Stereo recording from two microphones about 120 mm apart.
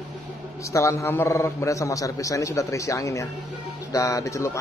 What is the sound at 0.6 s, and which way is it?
Speech, 25° left (ahead or behind).